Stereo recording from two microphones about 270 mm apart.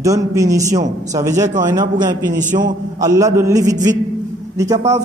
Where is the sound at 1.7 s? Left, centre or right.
Centre.